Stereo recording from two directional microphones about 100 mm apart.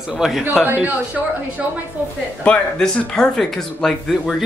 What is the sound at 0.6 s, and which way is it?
Speech, 15° right (ahead or behind).